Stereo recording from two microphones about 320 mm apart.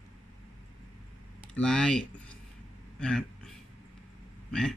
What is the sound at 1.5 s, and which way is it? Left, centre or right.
Speech, centre.